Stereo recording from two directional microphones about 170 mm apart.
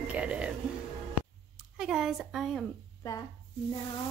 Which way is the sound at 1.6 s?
5° right (ahead or behind).